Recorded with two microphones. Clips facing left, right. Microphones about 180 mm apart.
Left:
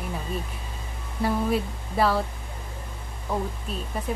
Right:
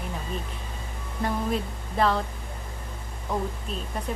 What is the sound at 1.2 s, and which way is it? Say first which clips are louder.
Speech: left 3 dB; 5° left (ahead or behind).